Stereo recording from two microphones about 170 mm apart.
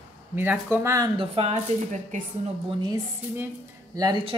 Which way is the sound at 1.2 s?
35° right (ahead or behind).